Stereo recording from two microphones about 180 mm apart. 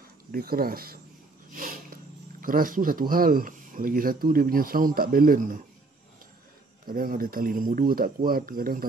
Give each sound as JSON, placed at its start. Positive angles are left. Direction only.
{"t": 0.3, "sound": "speech", "side_deg": -55}
{"t": 1.5, "sound": "a sound", "side_deg": -50}
{"t": 2.4, "sound": "speech", "side_deg": -50}
{"t": 6.9, "sound": "speech", "side_deg": -50}